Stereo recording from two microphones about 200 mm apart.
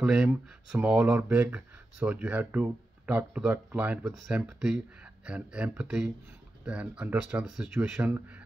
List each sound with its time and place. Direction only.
0.0 s speech: 5° right (ahead or behind)